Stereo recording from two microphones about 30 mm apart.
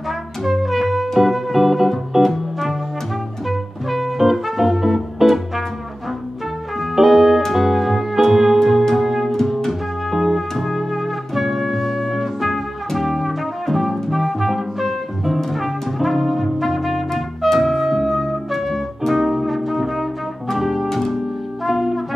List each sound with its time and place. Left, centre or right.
0.4 s music: centre
6.8 s music: centre
21.6 s brass instrument: centre